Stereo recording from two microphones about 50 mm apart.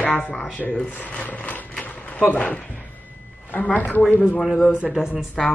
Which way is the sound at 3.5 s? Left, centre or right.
Left.